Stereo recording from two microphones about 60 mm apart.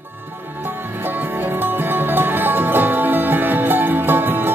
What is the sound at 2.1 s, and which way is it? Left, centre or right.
Music, right.